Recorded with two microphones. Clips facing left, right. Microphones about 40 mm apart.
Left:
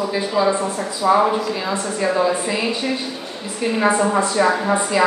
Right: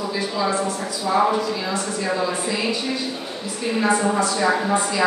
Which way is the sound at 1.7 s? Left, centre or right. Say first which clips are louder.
Left 3 dB; left.